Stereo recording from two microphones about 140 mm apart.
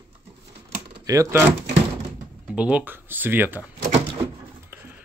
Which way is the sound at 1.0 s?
20° right (ahead or behind).